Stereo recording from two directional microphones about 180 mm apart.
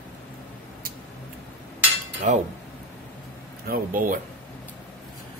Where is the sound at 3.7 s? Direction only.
50° right (ahead or behind).